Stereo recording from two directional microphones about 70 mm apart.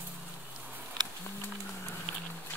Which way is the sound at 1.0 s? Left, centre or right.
Right.